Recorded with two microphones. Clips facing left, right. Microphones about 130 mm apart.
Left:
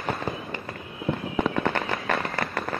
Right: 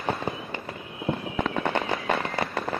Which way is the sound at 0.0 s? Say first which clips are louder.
Even; 25° right (ahead or behind).